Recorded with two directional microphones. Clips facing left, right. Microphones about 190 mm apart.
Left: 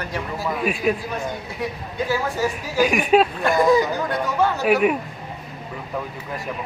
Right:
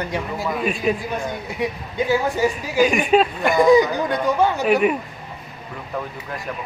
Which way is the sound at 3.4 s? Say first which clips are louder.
Right 3 dB; 15° right (ahead or behind).